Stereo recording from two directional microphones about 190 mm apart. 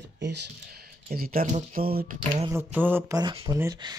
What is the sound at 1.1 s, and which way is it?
Speech, 50° right (ahead or behind).